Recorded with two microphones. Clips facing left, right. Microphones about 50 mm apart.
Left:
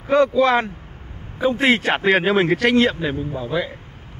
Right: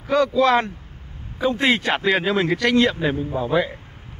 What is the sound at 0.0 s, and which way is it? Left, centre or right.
Speech, left.